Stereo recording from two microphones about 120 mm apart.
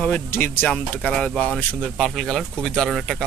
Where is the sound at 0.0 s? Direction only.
15° left (ahead or behind).